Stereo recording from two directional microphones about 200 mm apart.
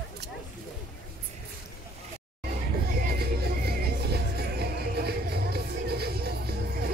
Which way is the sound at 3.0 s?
50° right (ahead or behind).